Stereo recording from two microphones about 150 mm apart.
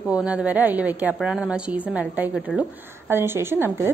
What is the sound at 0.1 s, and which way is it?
A woman's voice, 10° right (ahead or behind).